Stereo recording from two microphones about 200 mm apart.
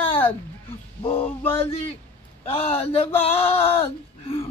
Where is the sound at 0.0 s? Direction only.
30° left (ahead or behind).